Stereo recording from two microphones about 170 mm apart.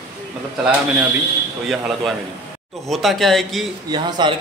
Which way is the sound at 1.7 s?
Centre (ahead or behind).